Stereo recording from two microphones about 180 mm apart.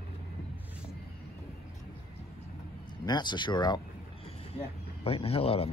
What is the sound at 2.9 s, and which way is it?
Speech, 25° left (ahead or behind).